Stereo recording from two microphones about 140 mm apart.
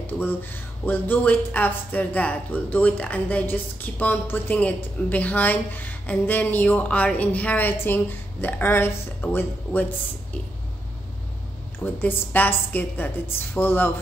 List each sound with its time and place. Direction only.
0.0 s speech: 15° left (ahead or behind)
11.8 s speech: 10° left (ahead or behind)